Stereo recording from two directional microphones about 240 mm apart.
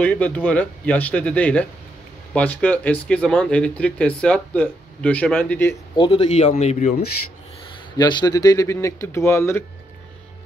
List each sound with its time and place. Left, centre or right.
0.0 s speech: centre
5.9 s a man's voice: left
8.0 s speech: centre